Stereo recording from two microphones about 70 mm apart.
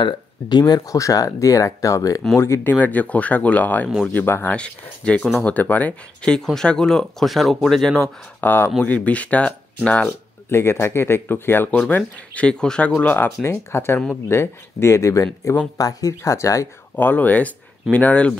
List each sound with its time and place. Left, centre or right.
0.1 s speech: left
0.7 s speech: left
2.3 s speech: left
2.7 s speech: left
4.6 s speech: centre
6.2 s speech: centre
8.4 s speech: left
10.5 s speech: left
11.9 s speech: centre
13.0 s speech: left
13.4 s speech: left
15.8 s speech: left
16.9 s speech: left